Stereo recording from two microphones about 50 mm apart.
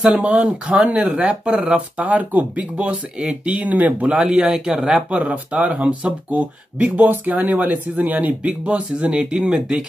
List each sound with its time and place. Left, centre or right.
0.1 s speech: right
4.1 s a man's voice: centre